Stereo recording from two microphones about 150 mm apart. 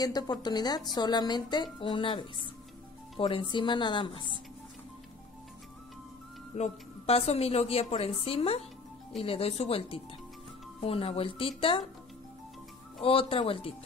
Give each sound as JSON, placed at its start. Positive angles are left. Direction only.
{"t": 0.0, "sound": "a woman's voice", "side_deg": 25}
{"t": 6.5, "sound": "a woman's voice", "side_deg": 45}
{"t": 13.0, "sound": "a woman's voice", "side_deg": 40}